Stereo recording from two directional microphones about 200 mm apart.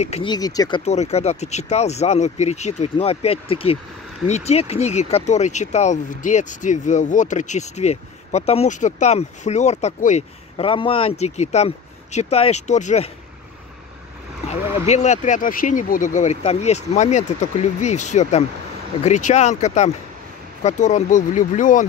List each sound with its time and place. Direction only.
0.0 s speech: 30° left (ahead or behind)
14.5 s speech: 35° left (ahead or behind)